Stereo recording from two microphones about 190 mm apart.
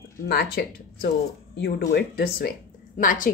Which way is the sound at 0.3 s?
55° left (ahead or behind).